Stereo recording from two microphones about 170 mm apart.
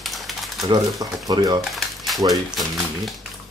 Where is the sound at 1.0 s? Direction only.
20° right (ahead or behind).